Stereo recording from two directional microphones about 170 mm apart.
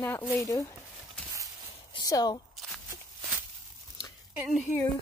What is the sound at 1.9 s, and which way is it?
Speech, 20° left (ahead or behind).